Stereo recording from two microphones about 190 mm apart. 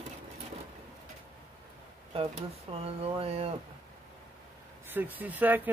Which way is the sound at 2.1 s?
30° right (ahead or behind).